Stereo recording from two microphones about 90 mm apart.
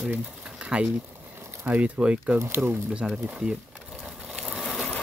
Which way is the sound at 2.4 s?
25° right (ahead or behind).